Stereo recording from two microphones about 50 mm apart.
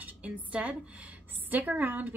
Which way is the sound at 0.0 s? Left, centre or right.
Right.